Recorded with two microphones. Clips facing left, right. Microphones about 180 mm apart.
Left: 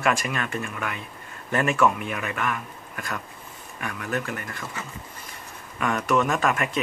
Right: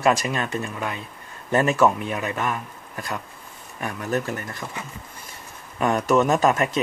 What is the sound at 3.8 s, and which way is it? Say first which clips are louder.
Speech: right 4 dB; 35° right (ahead or behind).